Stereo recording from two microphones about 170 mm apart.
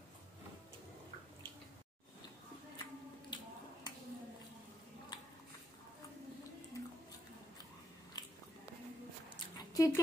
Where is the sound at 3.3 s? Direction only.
25° left (ahead or behind).